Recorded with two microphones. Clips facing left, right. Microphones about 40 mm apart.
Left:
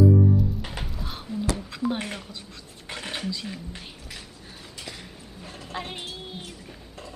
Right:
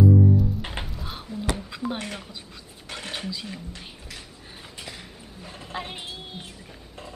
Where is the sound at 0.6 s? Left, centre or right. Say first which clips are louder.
Right 2 dB; right.